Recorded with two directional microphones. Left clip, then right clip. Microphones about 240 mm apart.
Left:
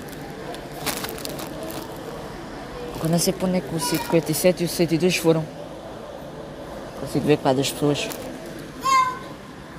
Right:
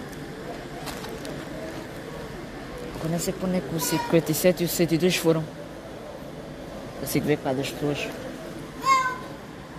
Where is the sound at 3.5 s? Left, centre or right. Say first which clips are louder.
Left 2 dB; centre.